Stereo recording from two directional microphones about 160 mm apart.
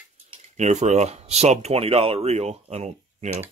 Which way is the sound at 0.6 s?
45° right (ahead or behind).